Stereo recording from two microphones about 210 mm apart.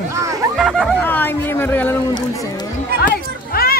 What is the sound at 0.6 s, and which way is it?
Speech, centre (ahead or behind).